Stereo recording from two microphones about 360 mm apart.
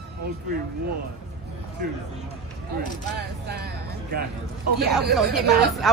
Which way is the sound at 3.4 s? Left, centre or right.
Right.